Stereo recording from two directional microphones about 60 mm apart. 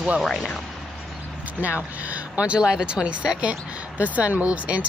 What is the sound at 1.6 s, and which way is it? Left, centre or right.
Speech, right.